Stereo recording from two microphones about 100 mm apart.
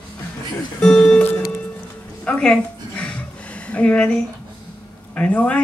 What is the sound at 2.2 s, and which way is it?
Music, 10° left (ahead or behind).